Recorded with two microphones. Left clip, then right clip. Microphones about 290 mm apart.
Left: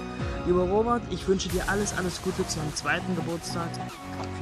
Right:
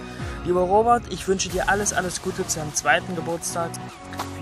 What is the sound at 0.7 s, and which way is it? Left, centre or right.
Speech, right.